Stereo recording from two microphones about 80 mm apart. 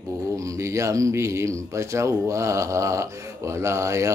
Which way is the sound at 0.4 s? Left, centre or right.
Right.